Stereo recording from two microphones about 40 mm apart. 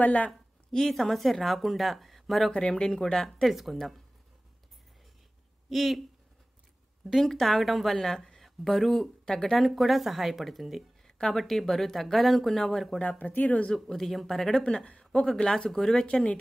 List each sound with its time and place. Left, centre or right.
0.0 s a woman's voice: left
0.7 s speech: centre
2.7 s speech: centre
3.4 s speech: centre
5.7 s speech: centre
7.2 s speech: centre
9.5 s speech: centre
11.1 s a sound: centre
11.3 s speech: centre
13.2 s speech: left
13.8 s speech: centre
14.5 s speech: left